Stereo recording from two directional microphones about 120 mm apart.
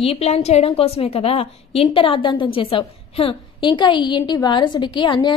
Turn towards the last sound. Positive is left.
turn(degrees=40)  # may be behind; listen again after turning